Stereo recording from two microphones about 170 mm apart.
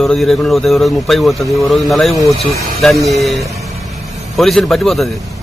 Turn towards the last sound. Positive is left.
turn(degrees=0)  # may be behind; listen again after turning